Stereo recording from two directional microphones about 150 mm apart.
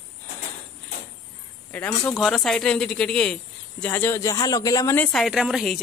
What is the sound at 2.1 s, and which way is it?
Speech, centre (ahead or behind).